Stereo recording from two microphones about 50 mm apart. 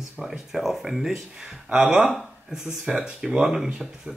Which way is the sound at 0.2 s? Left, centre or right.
Centre.